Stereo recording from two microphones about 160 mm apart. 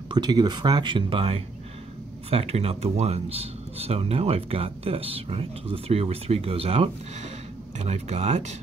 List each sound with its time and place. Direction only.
0.1 s speech: 25° right (ahead or behind); by 8.5 s 45° right (ahead or behind)